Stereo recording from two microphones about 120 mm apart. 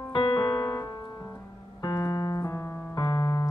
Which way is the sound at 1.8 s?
30° left (ahead or behind).